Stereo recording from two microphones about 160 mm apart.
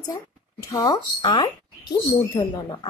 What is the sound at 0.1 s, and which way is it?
A woman's voice, 20° left (ahead or behind).